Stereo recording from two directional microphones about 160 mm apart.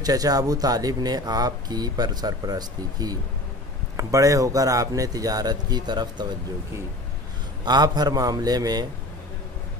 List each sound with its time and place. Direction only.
0.0 s speech: 25° right (ahead or behind)
7.6 s speech: 25° right (ahead or behind)